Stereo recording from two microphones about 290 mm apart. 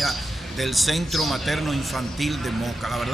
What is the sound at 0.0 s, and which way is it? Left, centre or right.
Speech, centre.